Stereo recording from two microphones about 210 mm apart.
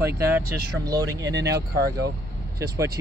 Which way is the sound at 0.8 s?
15° right (ahead or behind).